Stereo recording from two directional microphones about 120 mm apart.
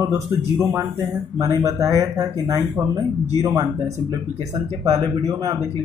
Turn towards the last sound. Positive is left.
turn(degrees=-25)  # may be behind; listen again after turning